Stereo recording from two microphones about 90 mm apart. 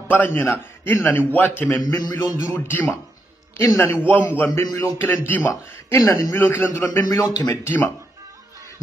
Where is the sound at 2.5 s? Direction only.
25° left (ahead or behind).